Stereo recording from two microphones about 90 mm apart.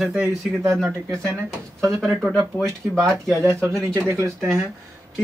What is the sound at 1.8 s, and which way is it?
Speech, centre (ahead or behind).